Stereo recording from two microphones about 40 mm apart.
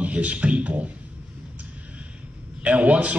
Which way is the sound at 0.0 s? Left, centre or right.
Right.